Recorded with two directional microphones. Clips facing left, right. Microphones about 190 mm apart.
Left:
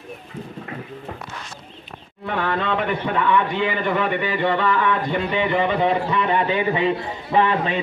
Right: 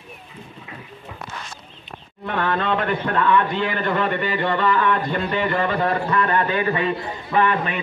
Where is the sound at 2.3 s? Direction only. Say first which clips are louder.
Right 1 dB; 5° left (ahead or behind).